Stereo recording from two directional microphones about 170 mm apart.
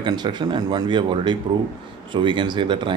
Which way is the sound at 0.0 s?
25° right (ahead or behind).